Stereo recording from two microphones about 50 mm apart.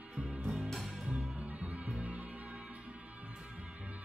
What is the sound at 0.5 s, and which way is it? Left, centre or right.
Music, centre.